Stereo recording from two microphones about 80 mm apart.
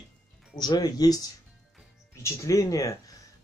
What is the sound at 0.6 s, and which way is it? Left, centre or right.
Speech, left.